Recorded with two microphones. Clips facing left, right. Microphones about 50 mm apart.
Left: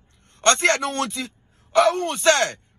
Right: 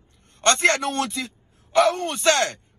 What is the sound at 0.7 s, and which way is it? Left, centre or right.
Speech, left.